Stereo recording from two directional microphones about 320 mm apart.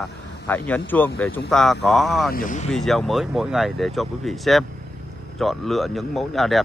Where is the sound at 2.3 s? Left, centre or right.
Left.